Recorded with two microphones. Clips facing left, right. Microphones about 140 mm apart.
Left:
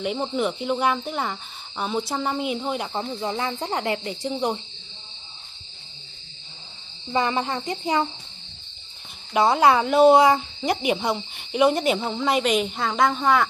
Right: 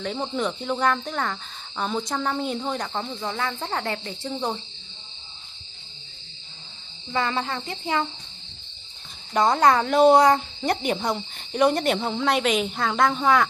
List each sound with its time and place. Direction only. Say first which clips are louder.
0.0 s speech: left 2 dB; 10° left (ahead or behind)
7.1 s cricket: left 2 dB; 20° left (ahead or behind)
9.3 s speech: left 1 dB; 5° left (ahead or behind)